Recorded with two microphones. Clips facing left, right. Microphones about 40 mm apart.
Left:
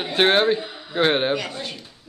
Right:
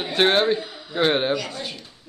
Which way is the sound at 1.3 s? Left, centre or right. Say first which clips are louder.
Left 1 dB; left.